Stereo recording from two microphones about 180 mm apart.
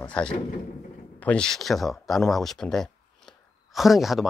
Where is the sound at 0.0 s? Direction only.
5° left (ahead or behind).